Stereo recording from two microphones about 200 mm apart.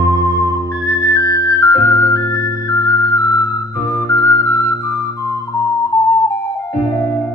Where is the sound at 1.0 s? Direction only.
15° left (ahead or behind).